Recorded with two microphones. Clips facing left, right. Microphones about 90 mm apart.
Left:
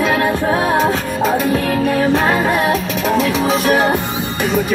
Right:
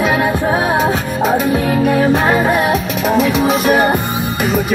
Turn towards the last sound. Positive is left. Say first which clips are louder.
# right 2 dB
turn(degrees=-10)  # may be behind; listen again after turning